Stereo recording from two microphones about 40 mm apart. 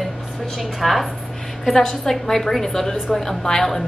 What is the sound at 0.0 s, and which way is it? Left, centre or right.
A woman's voice, centre.